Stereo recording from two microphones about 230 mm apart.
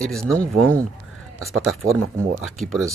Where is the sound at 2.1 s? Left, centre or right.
Centre.